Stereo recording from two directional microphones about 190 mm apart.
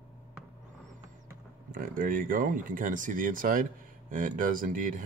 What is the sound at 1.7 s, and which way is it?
Speech, 45° right (ahead or behind).